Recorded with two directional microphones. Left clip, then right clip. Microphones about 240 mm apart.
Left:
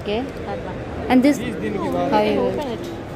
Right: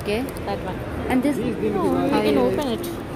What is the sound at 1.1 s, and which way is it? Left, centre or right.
Speech, left.